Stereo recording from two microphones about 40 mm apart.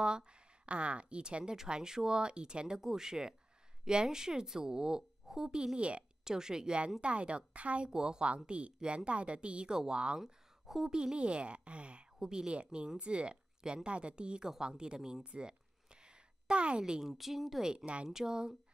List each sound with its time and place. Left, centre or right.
0.0 s a woman's voice: right
6.2 s a woman's voice: centre
7.0 s a woman's voice: right
7.9 s a woman's voice: centre
8.5 s a woman's voice: right
10.2 s a sound: centre
10.9 s a woman's voice: centre
12.2 s a woman's voice: centre
13.6 s speech: centre
13.8 s a woman's voice: right; by 15.2 s centre
15.2 s a sound: right
17.0 s speech: centre
17.6 s a woman's voice: right
18.0 s a woman's voice: centre